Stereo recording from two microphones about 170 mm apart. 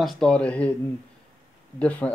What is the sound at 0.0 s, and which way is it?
Speech, 5° left (ahead or behind).